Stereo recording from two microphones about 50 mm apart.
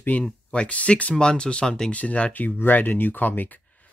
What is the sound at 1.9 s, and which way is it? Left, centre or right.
Speech, left.